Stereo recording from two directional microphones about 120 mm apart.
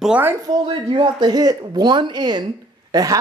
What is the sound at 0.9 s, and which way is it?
A man's voice, 35° right (ahead or behind).